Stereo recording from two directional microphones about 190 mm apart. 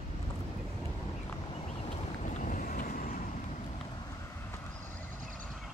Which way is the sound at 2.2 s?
45° left (ahead or behind).